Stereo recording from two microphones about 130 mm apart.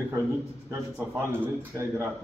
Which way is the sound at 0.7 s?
20° right (ahead or behind).